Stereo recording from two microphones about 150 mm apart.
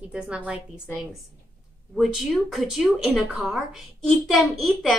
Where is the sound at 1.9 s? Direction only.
Centre (ahead or behind).